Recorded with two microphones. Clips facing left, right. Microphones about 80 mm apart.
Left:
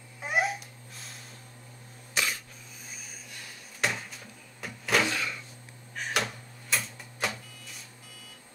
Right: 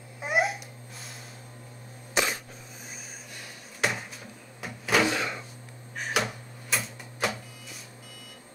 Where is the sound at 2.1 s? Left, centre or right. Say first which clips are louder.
Right 4 dB; right.